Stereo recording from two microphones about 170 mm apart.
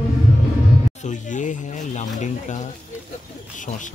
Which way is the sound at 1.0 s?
45° left (ahead or behind).